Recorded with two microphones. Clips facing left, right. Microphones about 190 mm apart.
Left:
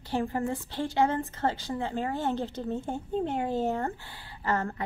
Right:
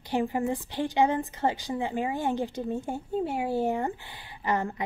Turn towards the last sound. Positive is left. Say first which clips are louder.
# right 1 dB
turn(degrees=-15)  # may be behind; listen again after turning